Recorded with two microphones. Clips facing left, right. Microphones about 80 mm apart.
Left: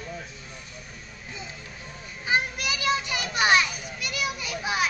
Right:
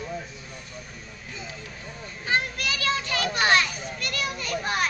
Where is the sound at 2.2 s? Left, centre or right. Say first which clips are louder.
Even; centre.